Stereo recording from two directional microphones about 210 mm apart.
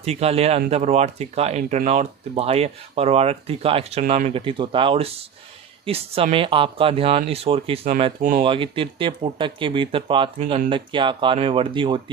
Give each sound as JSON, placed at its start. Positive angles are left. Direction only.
{"t": 0.0, "sound": "speech", "side_deg": -30}